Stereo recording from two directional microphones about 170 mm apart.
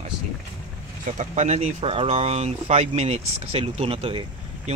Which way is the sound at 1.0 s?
45° right (ahead or behind).